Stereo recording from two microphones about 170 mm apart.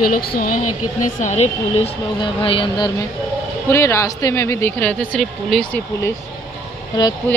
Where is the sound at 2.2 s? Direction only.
30° left (ahead or behind).